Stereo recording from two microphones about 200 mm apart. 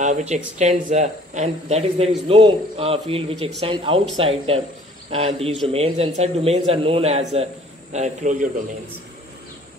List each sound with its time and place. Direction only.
0.0 s speech: 35° right (ahead or behind)